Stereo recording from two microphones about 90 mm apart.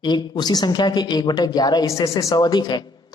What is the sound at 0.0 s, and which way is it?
A woman's voice, 55° left (ahead or behind).